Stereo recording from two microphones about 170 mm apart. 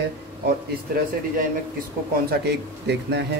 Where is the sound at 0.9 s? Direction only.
60° right (ahead or behind).